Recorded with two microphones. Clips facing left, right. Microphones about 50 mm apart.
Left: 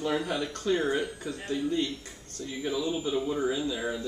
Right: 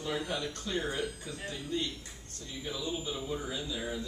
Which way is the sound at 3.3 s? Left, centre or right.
Left.